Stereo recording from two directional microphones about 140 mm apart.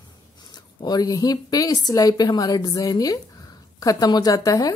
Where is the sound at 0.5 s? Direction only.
30° left (ahead or behind).